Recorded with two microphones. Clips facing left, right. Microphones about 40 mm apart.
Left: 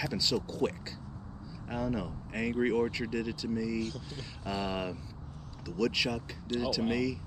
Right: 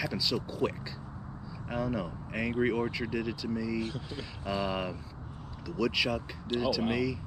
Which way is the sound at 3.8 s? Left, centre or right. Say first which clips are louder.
Right 1 dB; right.